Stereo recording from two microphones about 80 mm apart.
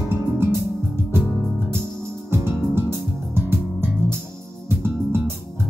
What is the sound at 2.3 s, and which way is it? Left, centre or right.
Music, right.